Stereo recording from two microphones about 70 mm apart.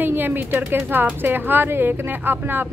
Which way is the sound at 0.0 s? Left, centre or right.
Right.